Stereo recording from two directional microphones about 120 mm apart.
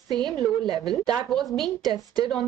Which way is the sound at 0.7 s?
Centre (ahead or behind).